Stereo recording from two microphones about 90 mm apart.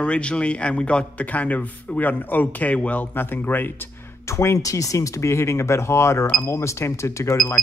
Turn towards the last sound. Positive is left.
turn(degrees=5)  # may be behind; listen again after turning